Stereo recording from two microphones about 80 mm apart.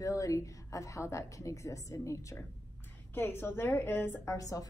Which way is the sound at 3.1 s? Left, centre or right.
Left.